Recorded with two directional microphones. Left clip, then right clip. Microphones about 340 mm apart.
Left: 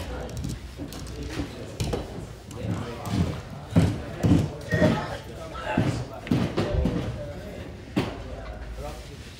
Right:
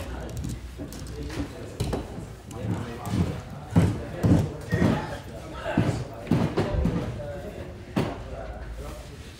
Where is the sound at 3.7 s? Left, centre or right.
Centre.